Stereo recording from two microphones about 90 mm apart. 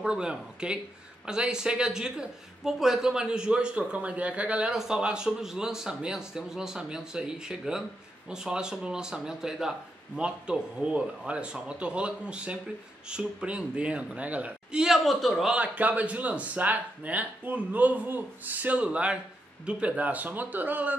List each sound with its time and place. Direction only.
0.0 s speech: 10° right (ahead or behind)
15.5 s a man's voice: 15° right (ahead or behind)